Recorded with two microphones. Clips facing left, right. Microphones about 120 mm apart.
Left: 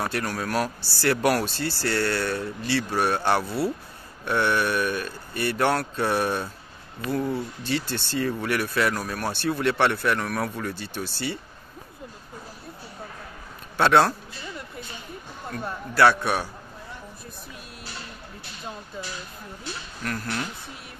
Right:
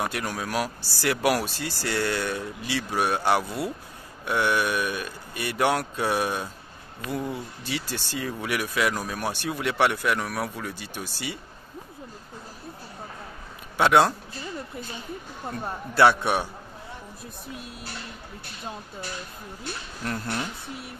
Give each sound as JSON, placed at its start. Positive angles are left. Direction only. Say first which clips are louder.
{"t": 0.0, "sound": "speech", "louder": "left 1 dB", "side_deg": -15}
{"t": 13.7, "sound": "speech", "louder": "even", "side_deg": -10}
{"t": 15.9, "sound": "a man's voice", "louder": "even", "side_deg": -20}
{"t": 20.0, "sound": "a man's voice", "louder": "even", "side_deg": -25}